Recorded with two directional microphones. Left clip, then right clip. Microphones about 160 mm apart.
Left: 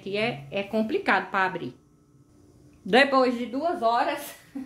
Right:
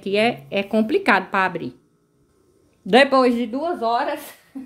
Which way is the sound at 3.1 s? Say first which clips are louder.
Right 5 dB; 50° right (ahead or behind).